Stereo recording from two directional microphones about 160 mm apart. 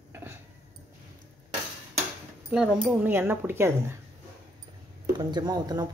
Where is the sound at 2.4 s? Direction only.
5° right (ahead or behind).